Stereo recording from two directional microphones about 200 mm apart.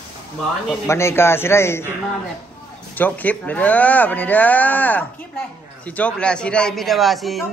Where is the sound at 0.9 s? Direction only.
15° left (ahead or behind).